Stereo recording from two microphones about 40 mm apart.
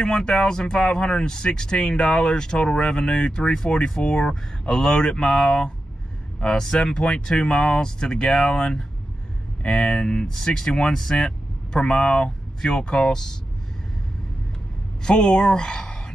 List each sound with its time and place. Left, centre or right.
0.0 s speech: centre
5.0 s speech: centre
10.2 s speech: centre
15.0 s speech: centre